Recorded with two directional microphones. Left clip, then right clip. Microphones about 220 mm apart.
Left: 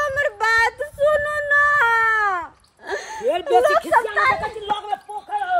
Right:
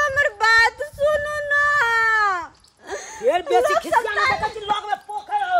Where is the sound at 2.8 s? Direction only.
30° left (ahead or behind).